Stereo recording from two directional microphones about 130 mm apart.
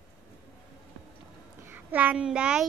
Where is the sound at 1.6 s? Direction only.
15° right (ahead or behind).